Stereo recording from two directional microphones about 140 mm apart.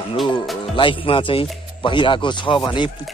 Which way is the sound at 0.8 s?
40° left (ahead or behind).